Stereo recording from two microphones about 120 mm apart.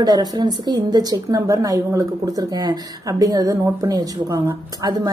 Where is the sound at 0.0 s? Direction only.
35° right (ahead or behind).